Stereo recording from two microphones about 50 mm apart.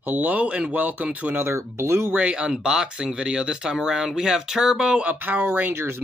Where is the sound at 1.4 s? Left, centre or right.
Right.